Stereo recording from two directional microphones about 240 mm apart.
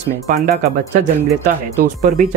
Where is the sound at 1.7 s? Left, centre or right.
Right.